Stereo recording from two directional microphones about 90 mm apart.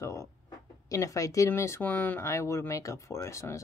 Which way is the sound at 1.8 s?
20° left (ahead or behind).